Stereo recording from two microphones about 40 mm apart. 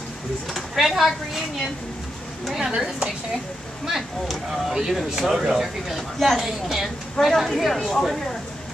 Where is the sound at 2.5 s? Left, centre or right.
Centre.